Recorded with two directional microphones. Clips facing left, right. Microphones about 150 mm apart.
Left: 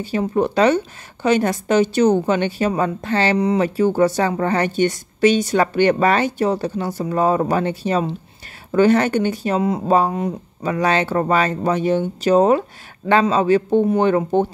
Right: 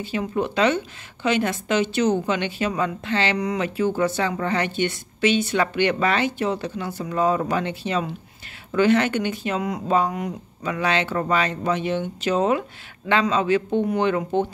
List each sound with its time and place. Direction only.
0.0 s speech: 40° left (ahead or behind)